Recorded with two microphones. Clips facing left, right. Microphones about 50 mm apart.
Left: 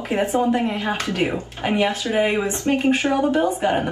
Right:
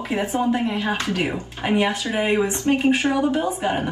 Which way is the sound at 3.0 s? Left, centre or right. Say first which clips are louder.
Left 2 dB; left.